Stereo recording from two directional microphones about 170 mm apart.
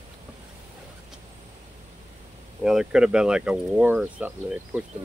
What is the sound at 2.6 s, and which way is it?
Speech, 5° right (ahead or behind).